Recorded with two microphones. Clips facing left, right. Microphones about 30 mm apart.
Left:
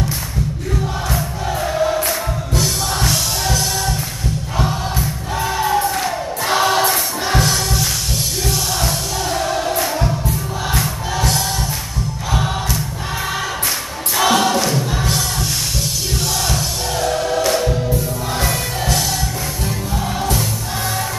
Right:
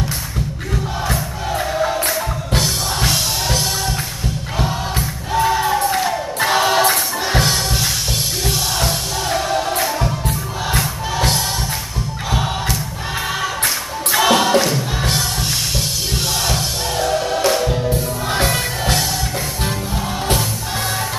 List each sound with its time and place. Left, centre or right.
1.6 s music: centre
3.1 s music: centre
5.3 s choir: centre
7.4 s music: centre
14.1 s choir: centre
15.0 s music: centre
16.4 s music: centre